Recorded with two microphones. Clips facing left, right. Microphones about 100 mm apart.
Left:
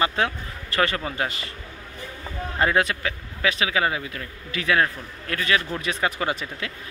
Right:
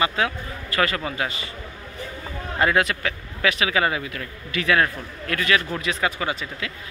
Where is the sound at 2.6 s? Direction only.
25° left (ahead or behind).